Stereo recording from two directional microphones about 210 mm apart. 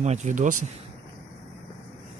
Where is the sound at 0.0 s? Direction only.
35° right (ahead or behind).